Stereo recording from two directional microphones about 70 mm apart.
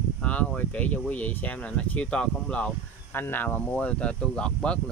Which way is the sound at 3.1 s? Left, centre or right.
Left.